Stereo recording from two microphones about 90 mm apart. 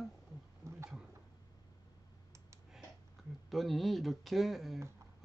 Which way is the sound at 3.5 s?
Centre (ahead or behind).